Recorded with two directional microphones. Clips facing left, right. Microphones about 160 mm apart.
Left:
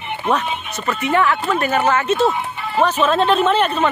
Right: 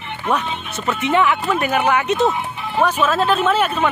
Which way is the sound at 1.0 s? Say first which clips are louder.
Even; 20° right (ahead or behind).